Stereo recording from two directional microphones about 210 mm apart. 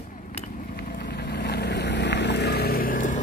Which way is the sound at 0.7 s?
50° left (ahead or behind).